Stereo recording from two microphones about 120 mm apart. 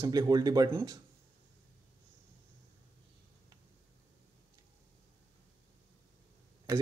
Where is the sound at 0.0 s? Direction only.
35° right (ahead or behind).